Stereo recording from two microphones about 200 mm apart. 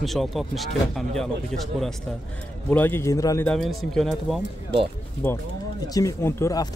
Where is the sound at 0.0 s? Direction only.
Centre (ahead or behind); by 3.4 s 15° left (ahead or behind).